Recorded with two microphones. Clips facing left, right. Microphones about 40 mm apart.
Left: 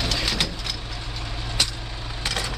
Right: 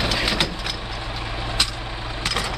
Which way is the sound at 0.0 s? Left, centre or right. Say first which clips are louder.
Right 3 dB; centre.